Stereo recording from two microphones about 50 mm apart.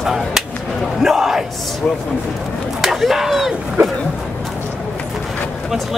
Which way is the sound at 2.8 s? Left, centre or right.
Centre.